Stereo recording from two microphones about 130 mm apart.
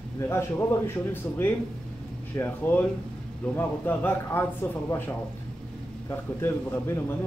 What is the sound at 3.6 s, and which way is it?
Speech, 15° left (ahead or behind).